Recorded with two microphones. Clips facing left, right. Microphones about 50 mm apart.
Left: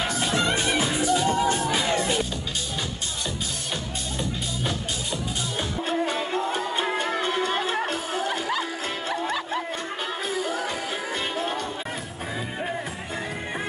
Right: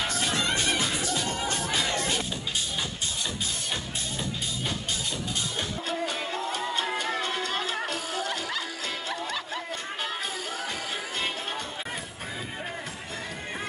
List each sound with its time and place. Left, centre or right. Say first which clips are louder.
0.0 s music: left 4 dB; centre
5.9 s music: left 6 dB; left
9.1 s music: left 5 dB; centre